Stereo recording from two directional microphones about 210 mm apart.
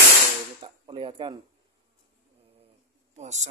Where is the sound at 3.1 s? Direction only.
35° right (ahead or behind).